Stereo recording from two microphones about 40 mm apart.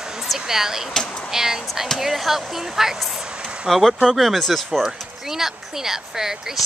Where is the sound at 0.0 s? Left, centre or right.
Centre.